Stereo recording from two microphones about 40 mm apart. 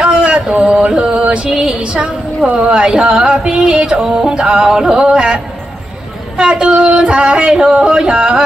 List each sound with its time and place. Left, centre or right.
0.0 s a sound: right
0.5 s a sound: centre
1.1 s music: right
1.5 s music: centre
1.8 s a woman's voice: right
2.9 s music: centre
6.3 s speech: right
7.7 s music: right